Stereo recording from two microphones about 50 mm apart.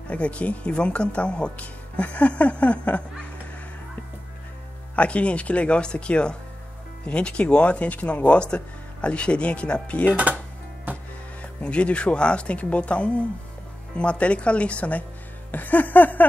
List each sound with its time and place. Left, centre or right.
0.1 s speech: left
4.9 s speech: left
10.9 s music: right
11.6 s speech: left
15.5 s a sound: left